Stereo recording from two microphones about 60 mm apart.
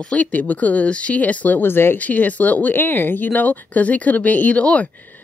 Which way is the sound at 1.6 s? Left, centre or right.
Left.